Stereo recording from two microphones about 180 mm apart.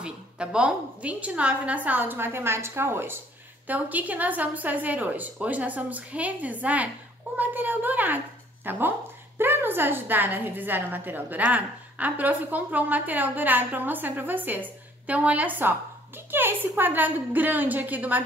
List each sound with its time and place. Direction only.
0.0 s a woman's voice: 5° right (ahead or behind)